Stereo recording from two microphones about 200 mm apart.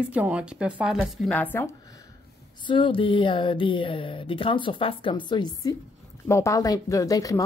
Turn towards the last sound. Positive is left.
turn(degrees=15)  # may be behind; listen again after turning